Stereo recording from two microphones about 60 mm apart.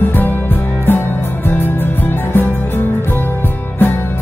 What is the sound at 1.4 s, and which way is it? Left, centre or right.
Music, left.